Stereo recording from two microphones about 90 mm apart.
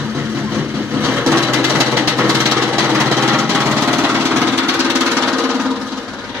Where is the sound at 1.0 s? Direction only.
25° right (ahead or behind).